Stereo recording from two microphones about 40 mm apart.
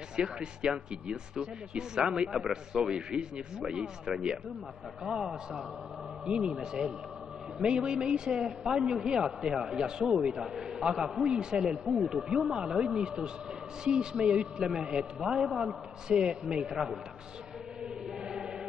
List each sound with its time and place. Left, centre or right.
0.1 s a man's voice: right
3.3 s a man's voice: centre
18.2 s choir: centre